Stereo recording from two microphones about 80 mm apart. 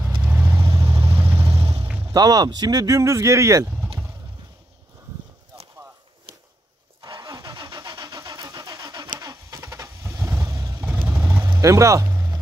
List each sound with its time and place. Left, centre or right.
0.4 s vehicle: right
1.1 s vehicle: right
2.1 s speech: right
3.0 s speech: right
7.0 s vehicle: right
10.8 s vehicle: centre
11.6 s a sound: right